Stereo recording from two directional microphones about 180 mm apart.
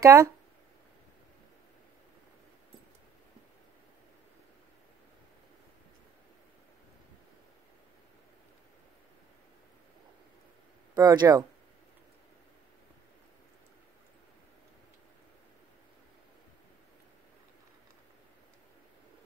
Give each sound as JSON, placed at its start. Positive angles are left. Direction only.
{"t": 0.0, "sound": "speech", "side_deg": -15}
{"t": 11.0, "sound": "speech", "side_deg": -20}